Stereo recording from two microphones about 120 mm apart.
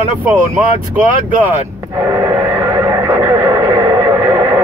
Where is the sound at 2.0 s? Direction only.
20° right (ahead or behind).